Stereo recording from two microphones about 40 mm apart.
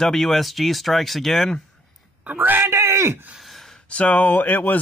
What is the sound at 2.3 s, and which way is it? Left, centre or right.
Speech, right.